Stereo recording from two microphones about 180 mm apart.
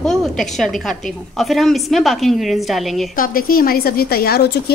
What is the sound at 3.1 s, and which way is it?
A woman's voice, 50° left (ahead or behind).